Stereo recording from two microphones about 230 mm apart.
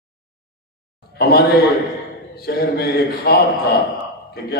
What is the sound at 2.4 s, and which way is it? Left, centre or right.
A man's voice, left.